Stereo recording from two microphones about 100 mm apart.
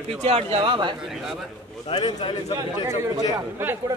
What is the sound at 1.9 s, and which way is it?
Speech, 65° left (ahead or behind).